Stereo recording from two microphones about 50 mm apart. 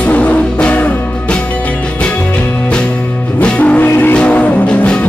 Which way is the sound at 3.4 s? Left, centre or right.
Left.